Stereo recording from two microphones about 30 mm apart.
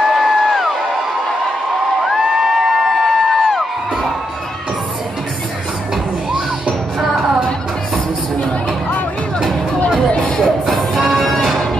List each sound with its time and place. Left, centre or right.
0.0 s music: centre
2.2 s crowd: right
10.7 s music: centre